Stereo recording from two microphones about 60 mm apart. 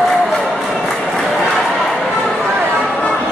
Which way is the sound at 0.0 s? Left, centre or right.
Centre.